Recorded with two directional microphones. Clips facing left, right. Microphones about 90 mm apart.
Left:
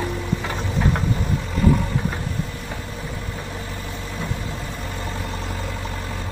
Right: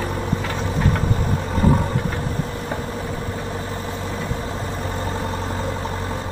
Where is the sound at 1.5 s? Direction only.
40° right (ahead or behind).